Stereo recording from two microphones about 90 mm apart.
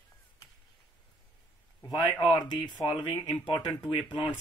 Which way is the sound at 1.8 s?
50° left (ahead or behind).